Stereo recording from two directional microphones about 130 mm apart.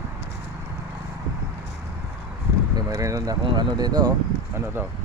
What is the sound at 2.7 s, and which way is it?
Speech, 25° right (ahead or behind).